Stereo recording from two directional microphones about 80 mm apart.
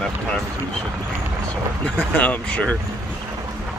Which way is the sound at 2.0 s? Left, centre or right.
Centre.